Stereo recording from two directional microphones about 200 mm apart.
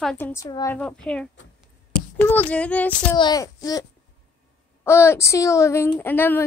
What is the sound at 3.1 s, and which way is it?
A woman's voice, 20° left (ahead or behind).